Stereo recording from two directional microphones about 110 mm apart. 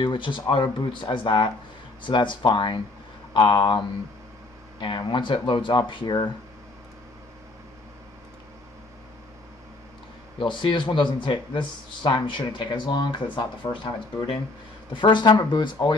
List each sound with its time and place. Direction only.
0.0 s speech: 50° left (ahead or behind)
10.4 s speech: 50° left (ahead or behind)